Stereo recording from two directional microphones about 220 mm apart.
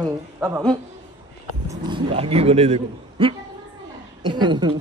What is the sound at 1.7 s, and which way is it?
A man's voice, 25° right (ahead or behind).